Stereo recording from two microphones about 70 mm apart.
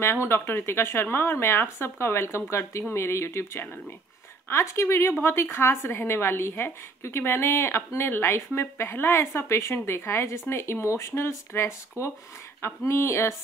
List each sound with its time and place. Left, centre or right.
0.0 s a woman's voice: left